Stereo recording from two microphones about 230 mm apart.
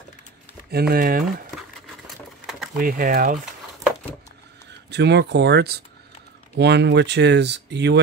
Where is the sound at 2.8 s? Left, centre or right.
Right.